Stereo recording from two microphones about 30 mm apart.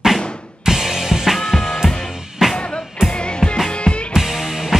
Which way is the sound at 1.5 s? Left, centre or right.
Centre.